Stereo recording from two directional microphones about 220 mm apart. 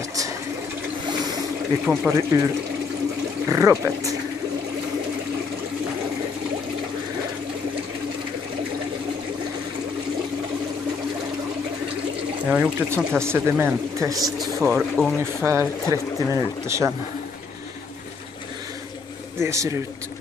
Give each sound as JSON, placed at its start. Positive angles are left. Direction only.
{"t": 1.9, "sound": "speech", "side_deg": -10}
{"t": 3.5, "sound": "speech", "side_deg": -15}
{"t": 12.4, "sound": "speech", "side_deg": -10}
{"t": 14.2, "sound": "speech", "side_deg": 0}
{"t": 15.4, "sound": "speech", "side_deg": -10}
{"t": 19.4, "sound": "speech", "side_deg": -15}